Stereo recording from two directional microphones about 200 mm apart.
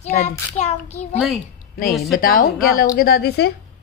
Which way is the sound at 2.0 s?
50° left (ahead or behind).